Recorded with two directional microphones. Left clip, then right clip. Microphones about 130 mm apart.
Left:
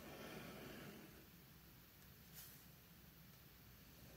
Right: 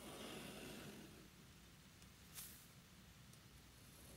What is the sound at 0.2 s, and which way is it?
Vehicle, 10° right (ahead or behind).